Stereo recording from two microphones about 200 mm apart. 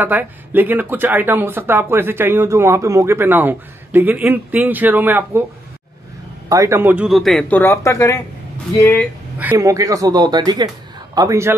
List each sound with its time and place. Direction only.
0.0 s speech: 10° right (ahead or behind)
6.5 s speech: 15° right (ahead or behind); by 8.2 s 15° left (ahead or behind)
9.4 s speech: 10° right (ahead or behind)